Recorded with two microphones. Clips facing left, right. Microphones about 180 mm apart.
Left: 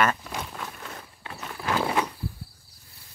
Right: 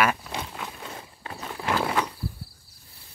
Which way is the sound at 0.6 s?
20° right (ahead or behind).